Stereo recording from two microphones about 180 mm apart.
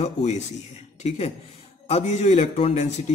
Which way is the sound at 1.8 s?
35° left (ahead or behind).